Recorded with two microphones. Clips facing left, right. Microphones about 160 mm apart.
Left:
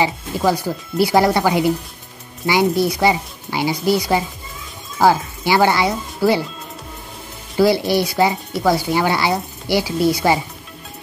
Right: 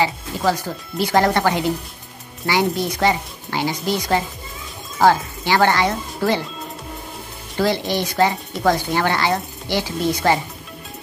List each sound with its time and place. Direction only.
0.5 s speech: 10° left (ahead or behind)
7.5 s speech: 10° left (ahead or behind)